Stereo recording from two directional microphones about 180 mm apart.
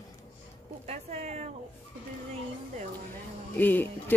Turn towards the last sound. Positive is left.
turn(degrees=10)  # may be behind; listen again after turning